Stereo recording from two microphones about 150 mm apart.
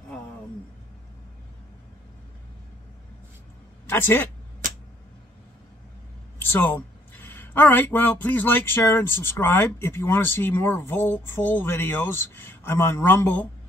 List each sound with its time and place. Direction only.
3.8 s speech: 15° left (ahead or behind)
4.6 s a sound: 60° right (ahead or behind)
6.4 s speech: 15° left (ahead or behind)